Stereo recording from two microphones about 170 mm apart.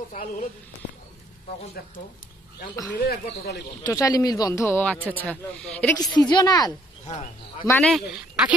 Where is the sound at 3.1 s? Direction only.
70° left (ahead or behind).